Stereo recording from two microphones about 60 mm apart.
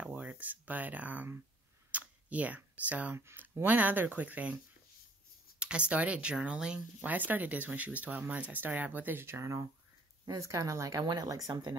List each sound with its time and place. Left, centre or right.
0.1 s speech: right
1.9 s camera: right
3.6 s speech: right
5.6 s speech: centre
7.0 s speech: right
9.4 s speech: right